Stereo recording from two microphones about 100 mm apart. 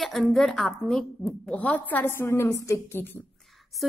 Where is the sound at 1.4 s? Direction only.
15° left (ahead or behind).